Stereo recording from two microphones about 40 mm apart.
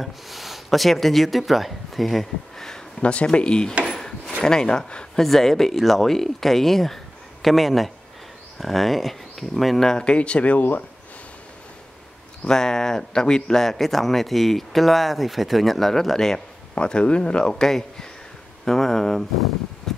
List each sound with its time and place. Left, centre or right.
0.0 s speech: centre
3.0 s speech: left
5.2 s speech: centre
9.8 s speech: left
10.5 s speech: left
12.4 s speech: centre
16.7 s speech: left
17.6 s speech: centre
19.9 s mechanical fan: centre